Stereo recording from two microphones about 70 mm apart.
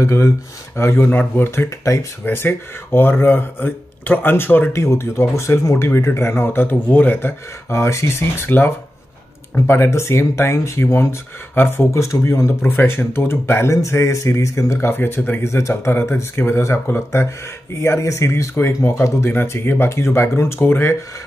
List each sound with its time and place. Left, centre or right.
0.0 s speech: left
8.5 s speech: left